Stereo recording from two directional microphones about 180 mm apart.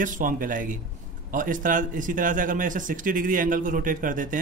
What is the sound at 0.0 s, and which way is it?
A man's voice, 45° right (ahead or behind).